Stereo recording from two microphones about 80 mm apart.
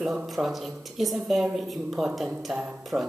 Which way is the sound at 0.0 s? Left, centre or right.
Centre.